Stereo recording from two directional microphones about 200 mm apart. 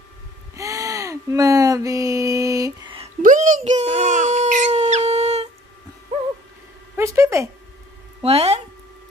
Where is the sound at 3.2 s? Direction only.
40° right (ahead or behind).